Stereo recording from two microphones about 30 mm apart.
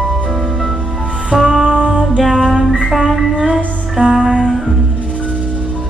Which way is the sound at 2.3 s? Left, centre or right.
Centre.